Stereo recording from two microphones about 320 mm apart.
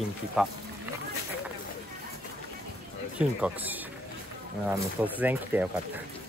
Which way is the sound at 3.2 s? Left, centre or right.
Centre.